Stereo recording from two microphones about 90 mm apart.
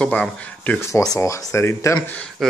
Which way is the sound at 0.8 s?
35° left (ahead or behind).